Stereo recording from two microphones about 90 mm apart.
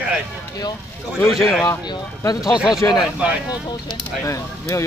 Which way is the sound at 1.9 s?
50° left (ahead or behind).